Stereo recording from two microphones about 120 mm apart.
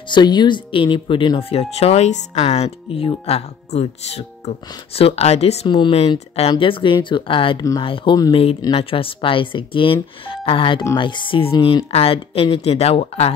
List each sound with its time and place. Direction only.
0.1 s speech: 40° left (ahead or behind); by 5.7 s 60° left (ahead or behind)
5.7 s speech: 40° left (ahead or behind)
5.9 s speech: 60° left (ahead or behind)
6.5 s speech: 45° left (ahead or behind)